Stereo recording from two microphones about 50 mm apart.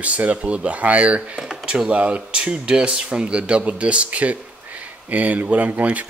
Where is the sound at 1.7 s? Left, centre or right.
Right.